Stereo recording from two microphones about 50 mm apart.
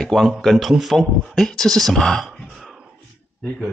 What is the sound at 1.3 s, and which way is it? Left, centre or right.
Speech, centre.